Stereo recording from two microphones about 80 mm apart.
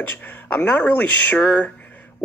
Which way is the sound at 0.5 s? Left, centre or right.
Centre.